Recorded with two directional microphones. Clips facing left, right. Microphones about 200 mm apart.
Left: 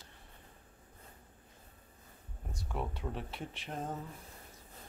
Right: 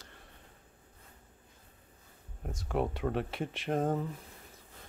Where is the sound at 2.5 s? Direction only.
80° right.